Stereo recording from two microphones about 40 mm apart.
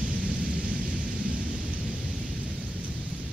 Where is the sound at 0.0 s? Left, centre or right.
Right.